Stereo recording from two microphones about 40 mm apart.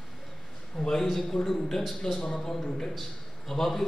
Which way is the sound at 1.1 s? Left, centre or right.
Centre.